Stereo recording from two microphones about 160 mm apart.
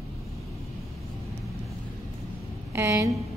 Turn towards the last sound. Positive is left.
turn(degrees=-20)  # may be behind; listen again after turning